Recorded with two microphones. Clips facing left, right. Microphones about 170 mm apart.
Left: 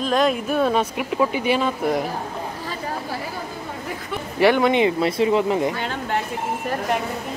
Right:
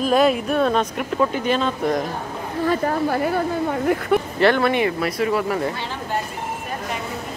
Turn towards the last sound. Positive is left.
turn(degrees=20)  # may be behind; listen again after turning